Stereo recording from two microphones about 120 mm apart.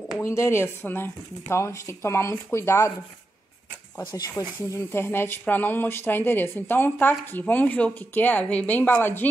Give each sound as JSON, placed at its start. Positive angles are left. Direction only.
{"t": 0.2, "sound": "speech", "side_deg": 25}
{"t": 4.0, "sound": "speech", "side_deg": 35}
{"t": 4.7, "sound": "speech", "side_deg": 20}